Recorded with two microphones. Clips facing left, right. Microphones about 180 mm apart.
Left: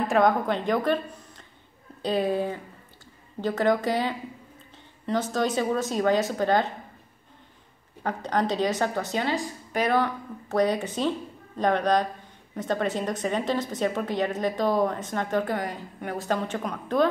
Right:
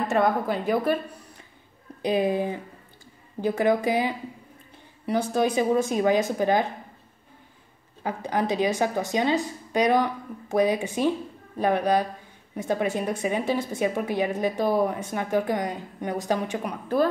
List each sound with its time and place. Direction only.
0.1 s a woman's voice: 5° right (ahead or behind)
8.0 s a woman's voice: 10° right (ahead or behind)